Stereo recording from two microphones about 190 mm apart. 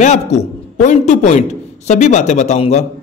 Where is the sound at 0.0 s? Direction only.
35° left (ahead or behind).